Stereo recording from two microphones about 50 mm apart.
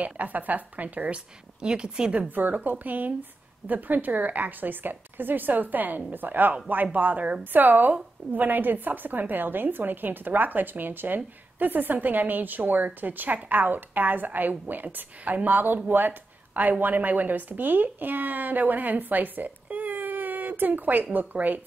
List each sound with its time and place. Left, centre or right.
0.0 s a woman's voice: right
1.6 s a woman's voice: centre
2.1 s a woman's voice: right